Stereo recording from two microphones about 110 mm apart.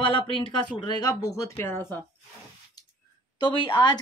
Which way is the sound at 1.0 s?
30° left (ahead or behind).